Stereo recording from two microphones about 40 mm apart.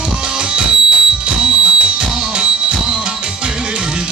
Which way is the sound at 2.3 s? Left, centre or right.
Right.